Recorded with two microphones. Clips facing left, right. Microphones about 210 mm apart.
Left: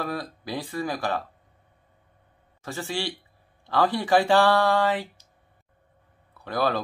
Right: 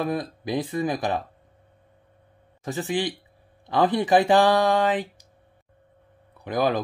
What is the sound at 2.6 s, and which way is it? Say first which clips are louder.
Speech: right 5 dB; 20° right (ahead or behind).